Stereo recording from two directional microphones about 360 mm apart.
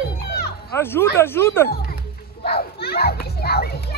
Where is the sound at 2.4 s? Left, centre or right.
Left.